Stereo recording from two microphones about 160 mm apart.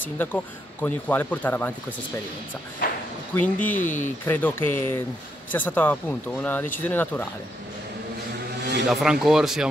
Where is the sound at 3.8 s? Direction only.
55° left (ahead or behind).